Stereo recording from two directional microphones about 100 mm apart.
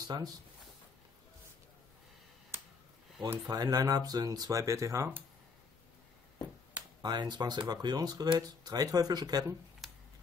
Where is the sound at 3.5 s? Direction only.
40° right (ahead or behind).